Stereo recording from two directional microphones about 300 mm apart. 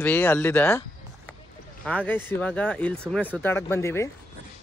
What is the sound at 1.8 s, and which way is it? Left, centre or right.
Speech, centre.